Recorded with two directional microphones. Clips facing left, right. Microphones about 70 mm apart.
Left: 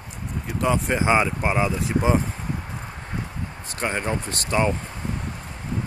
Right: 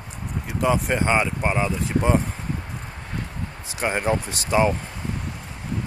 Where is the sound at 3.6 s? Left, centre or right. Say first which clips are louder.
Right 3 dB; centre.